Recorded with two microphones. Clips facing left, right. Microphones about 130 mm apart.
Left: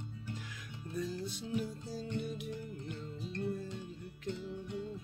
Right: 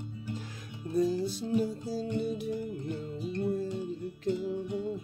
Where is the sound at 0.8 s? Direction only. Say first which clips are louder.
Right 11 dB; 35° right (ahead or behind).